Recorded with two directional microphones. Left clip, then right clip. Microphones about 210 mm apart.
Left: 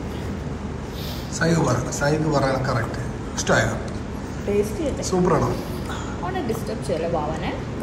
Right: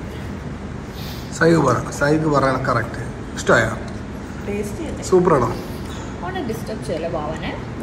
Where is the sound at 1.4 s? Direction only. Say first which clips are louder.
Right 6 dB; centre (ahead or behind).